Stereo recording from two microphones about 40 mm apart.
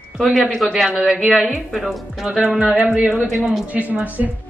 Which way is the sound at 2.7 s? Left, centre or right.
Right.